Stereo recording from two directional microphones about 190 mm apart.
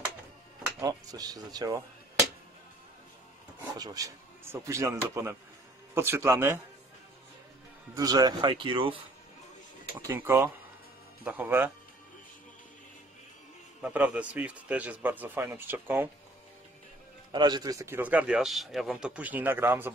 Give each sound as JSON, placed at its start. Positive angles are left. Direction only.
{"t": 0.7, "sound": "speech", "side_deg": -20}
{"t": 3.7, "sound": "a man's voice", "side_deg": -20}
{"t": 7.9, "sound": "speech", "side_deg": -20}
{"t": 9.9, "sound": "a man's voice", "side_deg": -10}
{"t": 13.7, "sound": "a man's voice", "side_deg": -5}
{"t": 17.3, "sound": "a man's voice", "side_deg": -25}